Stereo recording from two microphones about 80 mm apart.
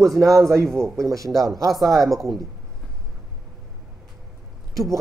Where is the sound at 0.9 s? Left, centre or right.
Right.